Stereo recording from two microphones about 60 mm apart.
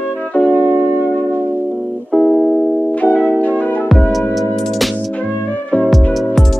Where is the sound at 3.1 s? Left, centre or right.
Left.